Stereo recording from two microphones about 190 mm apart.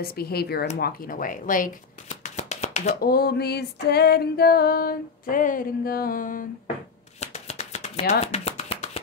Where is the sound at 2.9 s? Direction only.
55° left (ahead or behind).